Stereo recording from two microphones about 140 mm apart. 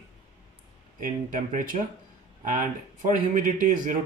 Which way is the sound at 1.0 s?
70° right (ahead or behind).